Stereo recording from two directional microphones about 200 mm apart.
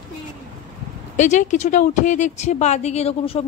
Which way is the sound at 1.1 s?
35° left (ahead or behind).